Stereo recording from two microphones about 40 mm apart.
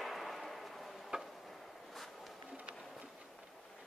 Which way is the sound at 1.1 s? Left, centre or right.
Right.